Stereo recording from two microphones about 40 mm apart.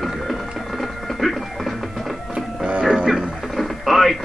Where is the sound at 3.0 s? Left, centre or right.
Centre.